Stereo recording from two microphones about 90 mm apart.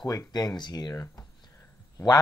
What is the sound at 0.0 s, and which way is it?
Speech, 45° left (ahead or behind).